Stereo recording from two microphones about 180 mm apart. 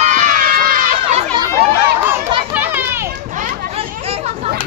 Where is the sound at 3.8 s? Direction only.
35° right (ahead or behind).